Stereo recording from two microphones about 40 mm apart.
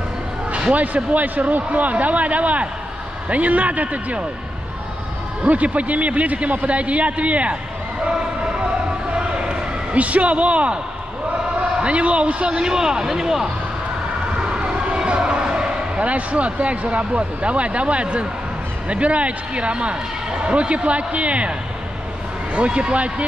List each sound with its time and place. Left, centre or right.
0.5 s speech: right
5.4 s speech: right
8.0 s a sound: right
11.8 s speech: right
12.5 s a man's voice: centre
14.5 s a sound: right
18.9 s speech: right